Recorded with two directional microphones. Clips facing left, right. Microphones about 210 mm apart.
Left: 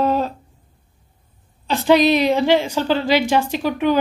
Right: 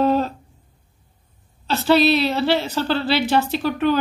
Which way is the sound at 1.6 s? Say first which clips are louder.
Left 2 dB; 15° left (ahead or behind).